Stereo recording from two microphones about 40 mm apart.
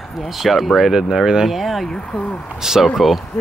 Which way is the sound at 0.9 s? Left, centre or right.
Centre.